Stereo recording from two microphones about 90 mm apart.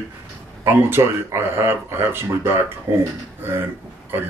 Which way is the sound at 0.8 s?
25° right (ahead or behind).